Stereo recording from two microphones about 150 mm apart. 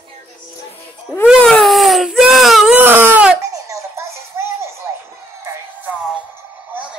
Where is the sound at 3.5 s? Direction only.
20° right (ahead or behind).